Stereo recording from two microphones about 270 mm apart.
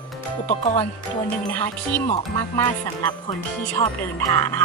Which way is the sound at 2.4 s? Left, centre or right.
Centre.